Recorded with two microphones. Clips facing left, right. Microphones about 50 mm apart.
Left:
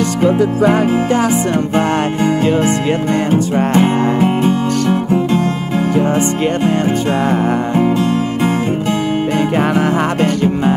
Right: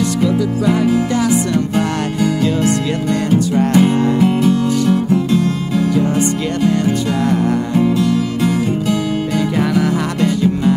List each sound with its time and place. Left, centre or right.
0.2 s music: left
7.2 s music: left
9.6 s music: left